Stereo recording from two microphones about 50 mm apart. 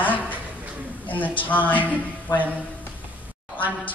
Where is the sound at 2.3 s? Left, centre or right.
Left.